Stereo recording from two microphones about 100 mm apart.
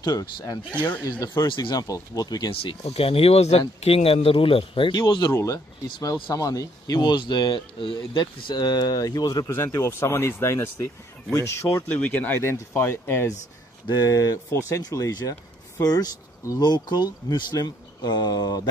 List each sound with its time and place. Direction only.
0.0 s speech: 40° left (ahead or behind)
0.7 s speech: 20° left (ahead or behind)
1.2 s speech: 35° left (ahead or behind)
1.5 s speech: 50° left (ahead or behind)
2.5 s speech: 65° left (ahead or behind); by 5.3 s 50° left (ahead or behind)
5.3 s speech: 30° left (ahead or behind)
9.8 s speech: 25° left (ahead or behind)
11.9 s speech: 15° left (ahead or behind)
13.8 s speech: 35° left (ahead or behind)